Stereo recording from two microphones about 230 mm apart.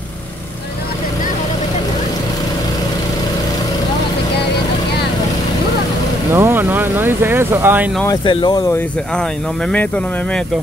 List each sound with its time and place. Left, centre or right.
6.3 s vehicle: centre
8.0 s speech: centre
9.7 s speech: centre